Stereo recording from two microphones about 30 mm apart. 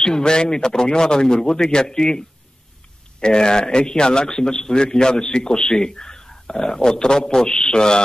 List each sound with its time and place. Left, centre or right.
0.0 s a man's voice: left